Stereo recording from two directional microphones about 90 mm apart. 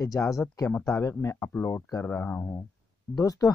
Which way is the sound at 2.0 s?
20° left (ahead or behind).